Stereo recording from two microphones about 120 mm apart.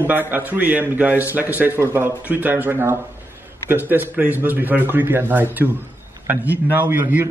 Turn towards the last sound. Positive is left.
turn(degrees=-15)  # may be behind; listen again after turning